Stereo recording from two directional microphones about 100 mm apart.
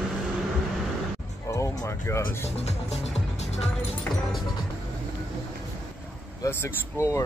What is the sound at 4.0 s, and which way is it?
Speech, 5° left (ahead or behind).